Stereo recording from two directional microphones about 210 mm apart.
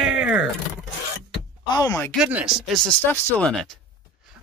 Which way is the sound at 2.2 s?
5° right (ahead or behind).